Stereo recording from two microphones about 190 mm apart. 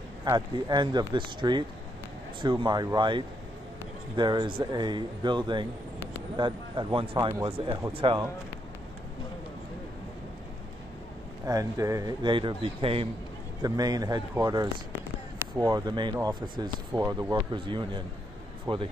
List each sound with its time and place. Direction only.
0.2 s a man's voice: 20° right (ahead or behind)
11.4 s a man's voice: 15° right (ahead or behind)